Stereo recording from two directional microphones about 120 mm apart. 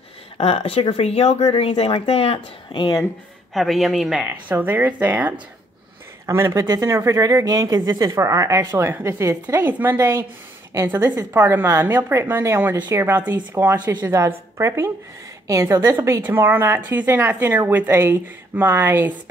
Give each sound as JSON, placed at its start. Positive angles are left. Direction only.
{"t": 0.4, "sound": "speech", "side_deg": 60}
{"t": 1.4, "sound": "speech", "side_deg": 45}
{"t": 3.5, "sound": "speech", "side_deg": 0}
{"t": 4.3, "sound": "speech", "side_deg": -15}
{"t": 6.2, "sound": "speech", "side_deg": -25}
{"t": 11.3, "sound": "speech", "side_deg": -20}
{"t": 16.2, "sound": "speech", "side_deg": -15}